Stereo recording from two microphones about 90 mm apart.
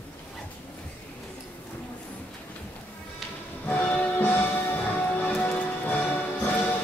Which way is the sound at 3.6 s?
20° left (ahead or behind).